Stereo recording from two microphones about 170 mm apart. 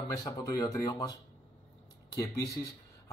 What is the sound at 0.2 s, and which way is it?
Speech, 20° left (ahead or behind).